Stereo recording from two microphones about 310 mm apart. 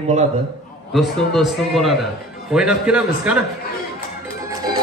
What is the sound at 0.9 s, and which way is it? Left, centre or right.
A man's voice, centre.